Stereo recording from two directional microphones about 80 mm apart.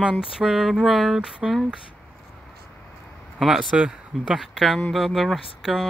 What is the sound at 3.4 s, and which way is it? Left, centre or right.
Speech, centre.